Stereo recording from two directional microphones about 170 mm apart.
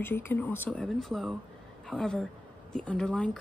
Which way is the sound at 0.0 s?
10° left (ahead or behind).